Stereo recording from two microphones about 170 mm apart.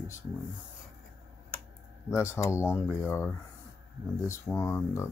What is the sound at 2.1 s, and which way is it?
Speech, 15° left (ahead or behind).